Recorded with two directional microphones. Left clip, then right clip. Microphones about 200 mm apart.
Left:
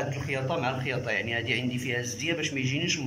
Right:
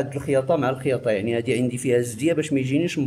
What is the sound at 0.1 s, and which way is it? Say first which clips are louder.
Speech: right 9 dB; 65° right (ahead or behind).